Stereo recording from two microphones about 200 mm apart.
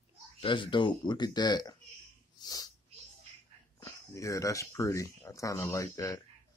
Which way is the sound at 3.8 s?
15° left (ahead or behind).